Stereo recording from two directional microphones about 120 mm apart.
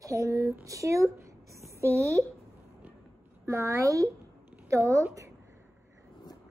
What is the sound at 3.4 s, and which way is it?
A woman's voice, 25° right (ahead or behind).